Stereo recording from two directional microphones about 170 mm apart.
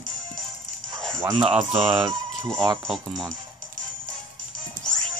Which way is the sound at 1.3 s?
30° right (ahead or behind).